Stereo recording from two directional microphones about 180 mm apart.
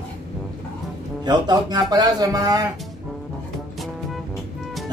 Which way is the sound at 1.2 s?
20° right (ahead or behind).